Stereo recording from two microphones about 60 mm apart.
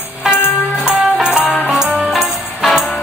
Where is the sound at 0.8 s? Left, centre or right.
Centre.